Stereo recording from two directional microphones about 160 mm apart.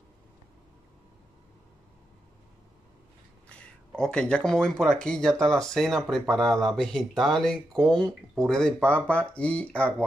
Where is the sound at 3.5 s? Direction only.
5° left (ahead or behind).